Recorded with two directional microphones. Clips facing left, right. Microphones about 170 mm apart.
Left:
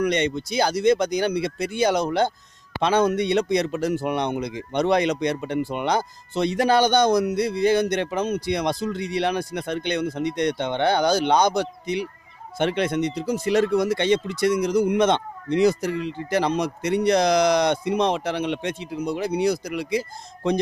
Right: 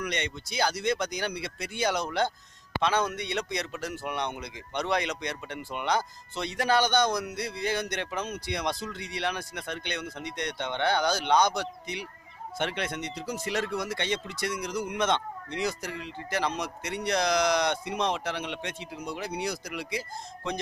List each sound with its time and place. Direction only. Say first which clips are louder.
0.0 s a man's voice: left 11 dB; 25° left (ahead or behind)
12.5 s a man's voice: left 10 dB; 25° left (ahead or behind)
14.5 s a man's voice: left 13 dB; 30° left (ahead or behind)